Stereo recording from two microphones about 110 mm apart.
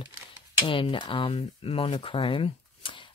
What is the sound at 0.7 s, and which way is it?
Speech, 50° left (ahead or behind).